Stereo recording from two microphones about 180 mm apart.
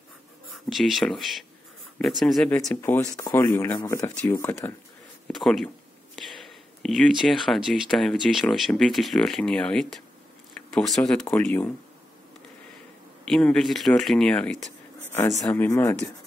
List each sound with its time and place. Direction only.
0.7 s speech: centre (ahead or behind)
2.8 s speech: 15° left (ahead or behind)
5.3 s speech: centre (ahead or behind)
13.2 s speech: 5° left (ahead or behind)
15.1 s speech: 20° left (ahead or behind)